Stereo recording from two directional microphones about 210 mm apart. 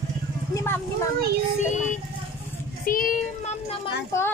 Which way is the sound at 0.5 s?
10° left (ahead or behind).